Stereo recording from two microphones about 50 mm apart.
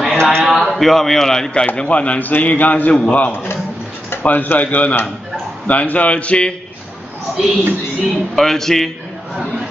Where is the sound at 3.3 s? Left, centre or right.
Left.